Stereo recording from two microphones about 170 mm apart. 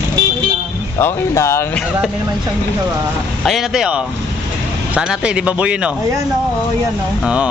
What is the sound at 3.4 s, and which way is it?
A man's voice, centre (ahead or behind).